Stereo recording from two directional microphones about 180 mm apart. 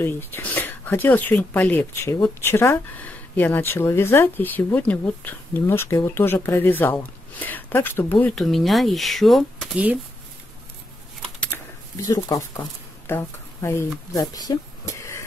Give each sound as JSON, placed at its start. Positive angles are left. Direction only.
{"t": 0.0, "sound": "speech", "side_deg": 10}
{"t": 11.3, "sound": "typing", "side_deg": 5}
{"t": 12.0, "sound": "speech", "side_deg": 20}